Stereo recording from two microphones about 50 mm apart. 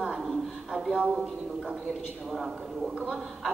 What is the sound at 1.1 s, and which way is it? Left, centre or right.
A man's voice, centre.